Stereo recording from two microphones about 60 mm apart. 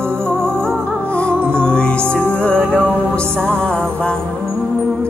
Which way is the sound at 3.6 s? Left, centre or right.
Centre.